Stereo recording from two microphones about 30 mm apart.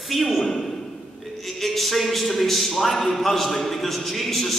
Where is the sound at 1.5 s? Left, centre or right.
Centre.